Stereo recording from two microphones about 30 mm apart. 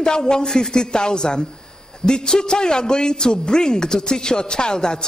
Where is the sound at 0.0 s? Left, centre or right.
Left.